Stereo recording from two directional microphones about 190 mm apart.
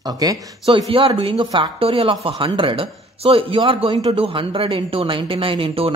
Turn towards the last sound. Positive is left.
turn(degrees=-30)  # may be behind; listen again after turning